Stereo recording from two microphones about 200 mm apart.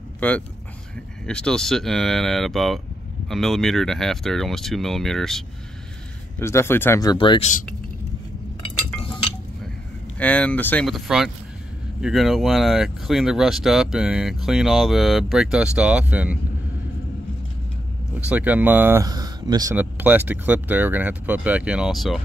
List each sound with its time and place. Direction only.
0.2 s speech: 5° left (ahead or behind)
6.4 s speech: 10° left (ahead or behind); by 7.6 s 35° left (ahead or behind)
8.9 s a sound: 25° left (ahead or behind)
10.1 s speech: 5° left (ahead or behind)
18.3 s speech: 10° right (ahead or behind)